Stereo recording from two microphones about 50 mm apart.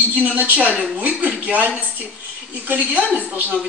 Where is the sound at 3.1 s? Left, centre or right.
Right.